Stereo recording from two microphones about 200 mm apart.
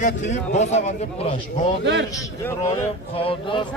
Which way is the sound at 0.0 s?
35° left (ahead or behind).